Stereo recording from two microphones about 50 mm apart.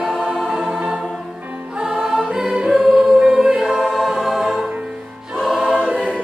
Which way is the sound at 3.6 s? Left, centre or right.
Centre.